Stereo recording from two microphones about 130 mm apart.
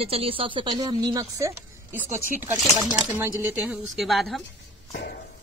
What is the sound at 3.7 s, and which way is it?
Speech, centre (ahead or behind).